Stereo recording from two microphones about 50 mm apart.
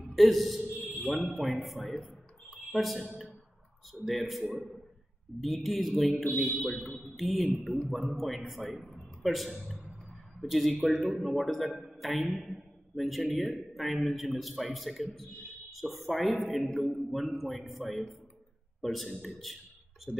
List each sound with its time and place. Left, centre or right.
0.1 s a man's voice: centre
6.3 s a man's voice: right
7.2 s a man's voice: centre